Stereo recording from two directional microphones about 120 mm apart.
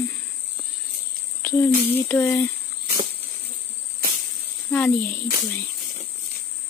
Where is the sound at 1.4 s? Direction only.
20° left (ahead or behind).